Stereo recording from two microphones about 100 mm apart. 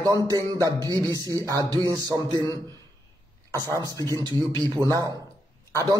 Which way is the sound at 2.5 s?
40° right (ahead or behind).